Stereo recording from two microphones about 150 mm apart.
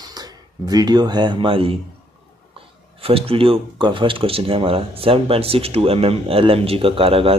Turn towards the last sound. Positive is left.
turn(degrees=-40)  # may be behind; listen again after turning